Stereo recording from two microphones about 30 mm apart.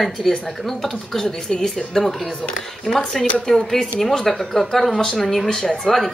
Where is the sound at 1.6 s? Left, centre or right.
Centre.